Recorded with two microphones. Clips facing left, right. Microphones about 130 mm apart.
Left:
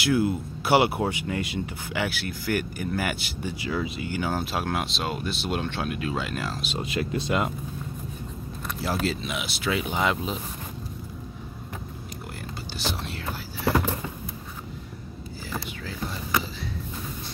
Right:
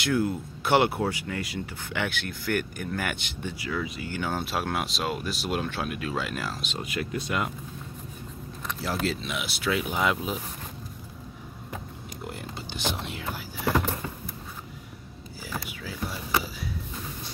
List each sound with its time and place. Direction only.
0.0 s speech: 5° left (ahead or behind)
1.9 s speech: 5° left (ahead or behind)
3.5 s speech: 25° left (ahead or behind)
4.1 s speech: 5° left (ahead or behind)
6.8 s speech: 25° left (ahead or behind)
8.6 s speech: centre (ahead or behind)
12.7 s whispering: 20° right (ahead or behind)
15.5 s a sound: 5° right (ahead or behind)